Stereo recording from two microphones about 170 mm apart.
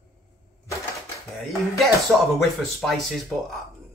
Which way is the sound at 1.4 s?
Centre (ahead or behind).